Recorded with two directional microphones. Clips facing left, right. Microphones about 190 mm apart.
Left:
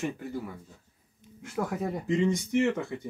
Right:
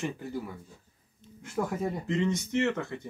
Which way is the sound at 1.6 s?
Centre (ahead or behind).